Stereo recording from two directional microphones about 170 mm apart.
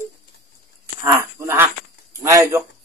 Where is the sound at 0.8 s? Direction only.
15° right (ahead or behind).